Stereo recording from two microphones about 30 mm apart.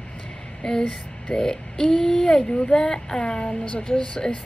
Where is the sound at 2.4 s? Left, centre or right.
Left.